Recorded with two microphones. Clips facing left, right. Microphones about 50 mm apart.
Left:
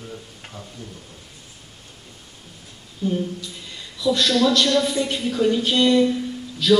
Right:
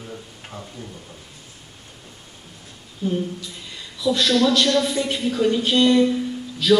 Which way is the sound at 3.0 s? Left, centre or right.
Centre.